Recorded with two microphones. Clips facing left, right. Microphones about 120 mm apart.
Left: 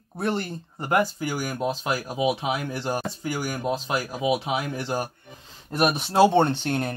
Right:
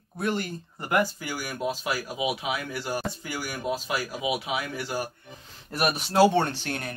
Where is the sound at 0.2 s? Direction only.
30° left (ahead or behind).